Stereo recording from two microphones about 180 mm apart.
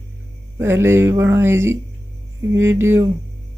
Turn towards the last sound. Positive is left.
turn(degrees=-15)  # may be behind; listen again after turning